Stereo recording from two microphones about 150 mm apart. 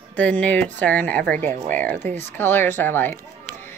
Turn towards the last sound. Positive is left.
turn(degrees=15)  # may be behind; listen again after turning